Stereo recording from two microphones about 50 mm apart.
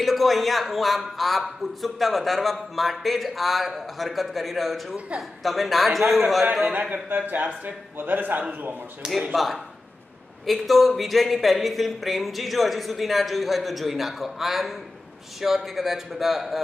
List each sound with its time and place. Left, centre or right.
0.0 s a man's voice: centre
6.4 s speech: right
6.7 s a man's voice: right
9.3 s a man's voice: centre